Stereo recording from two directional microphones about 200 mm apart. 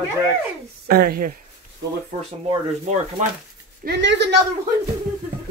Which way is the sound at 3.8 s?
60° right (ahead or behind).